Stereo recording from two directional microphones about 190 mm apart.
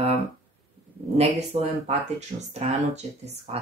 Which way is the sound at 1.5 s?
30° right (ahead or behind).